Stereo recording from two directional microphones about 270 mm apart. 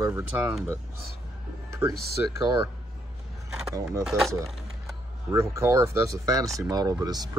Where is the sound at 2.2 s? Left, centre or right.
Centre.